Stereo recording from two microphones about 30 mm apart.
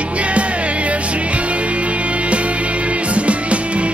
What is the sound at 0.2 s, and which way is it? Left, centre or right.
Music, right.